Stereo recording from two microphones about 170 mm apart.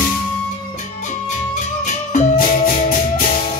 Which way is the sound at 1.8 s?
45° left (ahead or behind).